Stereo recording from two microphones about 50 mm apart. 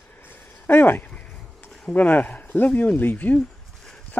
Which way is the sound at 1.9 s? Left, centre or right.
Left.